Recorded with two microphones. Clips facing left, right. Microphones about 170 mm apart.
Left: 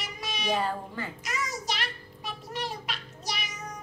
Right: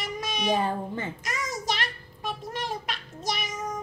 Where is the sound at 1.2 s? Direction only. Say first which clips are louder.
Even; 45° right (ahead or behind).